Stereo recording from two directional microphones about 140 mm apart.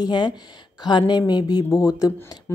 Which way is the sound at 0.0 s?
30° left (ahead or behind).